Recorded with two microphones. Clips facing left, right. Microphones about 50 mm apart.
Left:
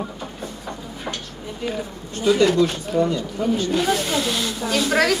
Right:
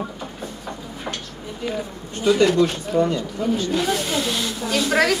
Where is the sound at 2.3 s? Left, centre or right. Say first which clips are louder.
Even; right.